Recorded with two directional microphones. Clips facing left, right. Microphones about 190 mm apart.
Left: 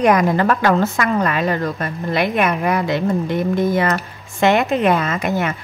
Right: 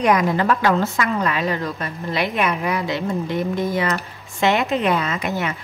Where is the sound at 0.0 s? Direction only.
50° left (ahead or behind).